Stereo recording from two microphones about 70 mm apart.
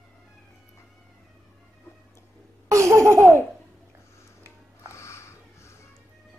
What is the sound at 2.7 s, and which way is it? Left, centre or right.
Laughter, right.